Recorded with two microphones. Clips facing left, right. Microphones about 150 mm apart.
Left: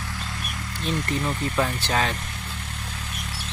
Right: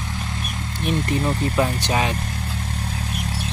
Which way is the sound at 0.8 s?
25° right (ahead or behind).